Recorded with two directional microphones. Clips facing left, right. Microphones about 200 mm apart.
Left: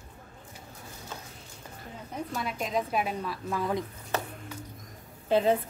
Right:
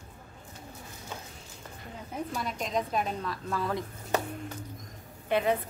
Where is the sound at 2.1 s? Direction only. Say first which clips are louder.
Even; 5° left (ahead or behind).